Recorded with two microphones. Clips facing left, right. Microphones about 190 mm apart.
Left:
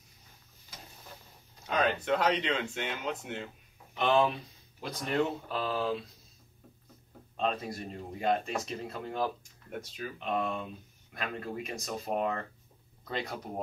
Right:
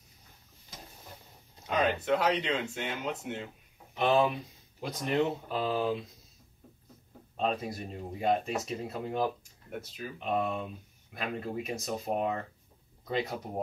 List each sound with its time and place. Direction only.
1.7 s speech: 5° right (ahead or behind)
4.7 s speech: 20° right (ahead or behind)
7.3 s speech: 5° right (ahead or behind)